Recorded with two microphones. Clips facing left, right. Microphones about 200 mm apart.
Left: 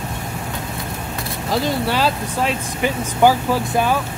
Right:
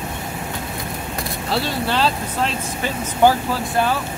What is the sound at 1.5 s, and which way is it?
Speech, 10° left (ahead or behind).